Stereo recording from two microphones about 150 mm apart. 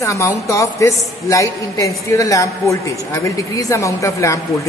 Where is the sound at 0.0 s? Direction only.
20° left (ahead or behind).